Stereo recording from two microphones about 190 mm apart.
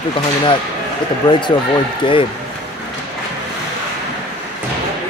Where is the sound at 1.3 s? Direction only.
25° left (ahead or behind).